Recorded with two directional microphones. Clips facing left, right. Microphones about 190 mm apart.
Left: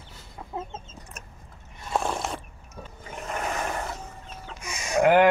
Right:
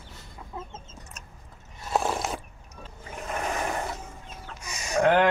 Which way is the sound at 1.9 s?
Centre (ahead or behind).